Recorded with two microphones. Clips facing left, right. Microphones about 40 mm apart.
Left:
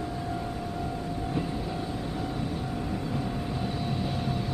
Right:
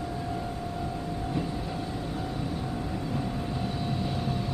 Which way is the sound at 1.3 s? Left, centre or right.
Centre.